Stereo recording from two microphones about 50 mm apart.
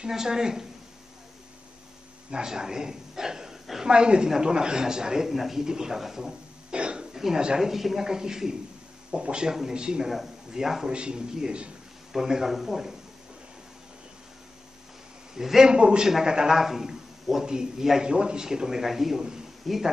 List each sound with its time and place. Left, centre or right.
0.0 s speech: centre
2.3 s a man's voice: centre
10.0 s a man's voice: centre
10.9 s a man's voice: centre
15.3 s speech: centre